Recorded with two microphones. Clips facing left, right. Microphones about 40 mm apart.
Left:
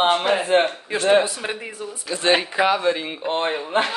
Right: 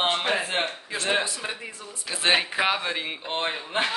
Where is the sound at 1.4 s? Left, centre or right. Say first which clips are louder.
Left 5 dB; left.